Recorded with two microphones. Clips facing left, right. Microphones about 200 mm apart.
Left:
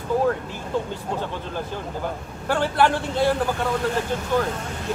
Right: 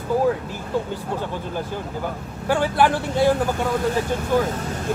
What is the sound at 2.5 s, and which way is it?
Speech, 10° right (ahead or behind).